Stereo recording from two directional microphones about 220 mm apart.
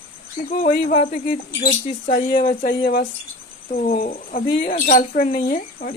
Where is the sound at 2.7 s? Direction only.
45° left (ahead or behind).